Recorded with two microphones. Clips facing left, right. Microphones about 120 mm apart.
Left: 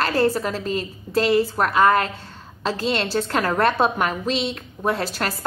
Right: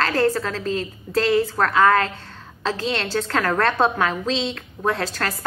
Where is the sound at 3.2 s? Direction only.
20° left (ahead or behind).